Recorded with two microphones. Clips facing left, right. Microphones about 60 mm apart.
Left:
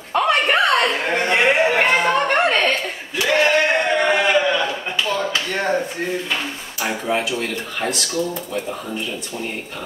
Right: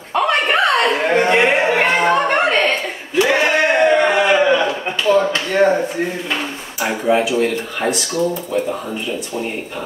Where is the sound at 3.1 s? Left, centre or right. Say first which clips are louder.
Right 2 dB; centre.